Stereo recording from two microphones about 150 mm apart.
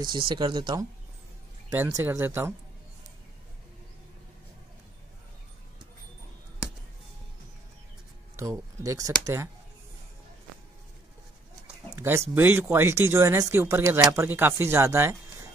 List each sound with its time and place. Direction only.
0.0 s speech: 30° right (ahead or behind)
1.9 s speech: 20° right (ahead or behind)
8.4 s speech: 20° right (ahead or behind)
11.6 s speech: 15° right (ahead or behind)